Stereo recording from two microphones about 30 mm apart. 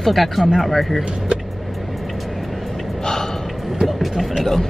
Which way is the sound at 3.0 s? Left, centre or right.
Centre.